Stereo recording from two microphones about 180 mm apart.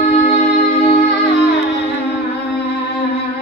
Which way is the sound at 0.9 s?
75° left (ahead or behind).